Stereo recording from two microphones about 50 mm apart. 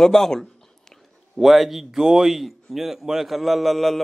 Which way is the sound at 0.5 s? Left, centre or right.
Centre.